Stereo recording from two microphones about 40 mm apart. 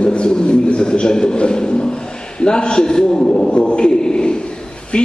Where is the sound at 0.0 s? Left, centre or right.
Left.